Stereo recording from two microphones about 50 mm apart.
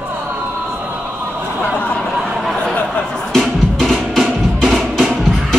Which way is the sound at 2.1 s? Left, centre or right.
Centre.